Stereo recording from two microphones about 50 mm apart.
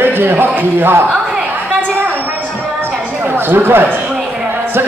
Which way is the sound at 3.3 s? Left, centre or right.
Right.